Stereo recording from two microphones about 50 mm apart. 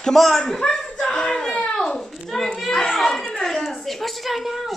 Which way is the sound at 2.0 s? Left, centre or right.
Centre.